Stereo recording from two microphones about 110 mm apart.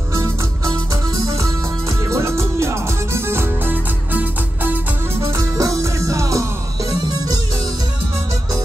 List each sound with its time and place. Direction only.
0.2 s music: 30° right (ahead or behind)
5.2 s music: 30° right (ahead or behind)